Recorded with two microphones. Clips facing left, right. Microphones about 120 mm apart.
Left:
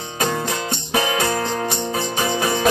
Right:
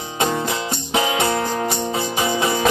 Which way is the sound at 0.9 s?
25° right (ahead or behind).